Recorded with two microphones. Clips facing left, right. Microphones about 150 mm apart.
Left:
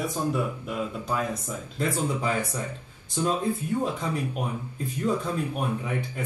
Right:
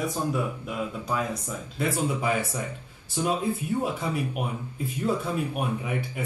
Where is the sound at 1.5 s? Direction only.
10° right (ahead or behind).